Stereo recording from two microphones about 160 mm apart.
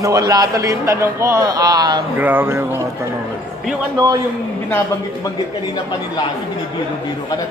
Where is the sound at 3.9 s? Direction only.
25° right (ahead or behind).